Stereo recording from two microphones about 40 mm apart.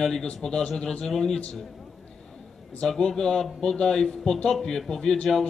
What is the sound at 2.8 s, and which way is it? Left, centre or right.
A man's voice, centre.